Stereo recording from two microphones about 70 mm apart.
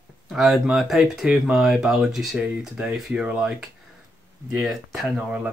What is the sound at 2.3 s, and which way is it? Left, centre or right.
Speech, centre.